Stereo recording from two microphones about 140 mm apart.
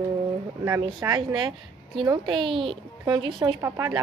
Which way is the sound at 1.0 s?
30° right (ahead or behind).